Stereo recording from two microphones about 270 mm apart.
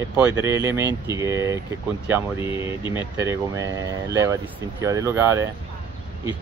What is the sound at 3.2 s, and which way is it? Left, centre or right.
Speech, centre.